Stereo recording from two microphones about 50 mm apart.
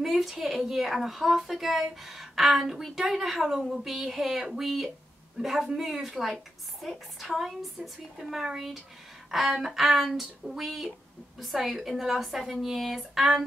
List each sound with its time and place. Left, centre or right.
0.0 s a woman's voice: centre
5.4 s a man's voice: centre
5.8 s a woman's voice: centre